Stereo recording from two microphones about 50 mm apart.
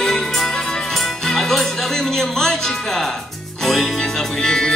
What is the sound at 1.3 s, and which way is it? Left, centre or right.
Speech, centre.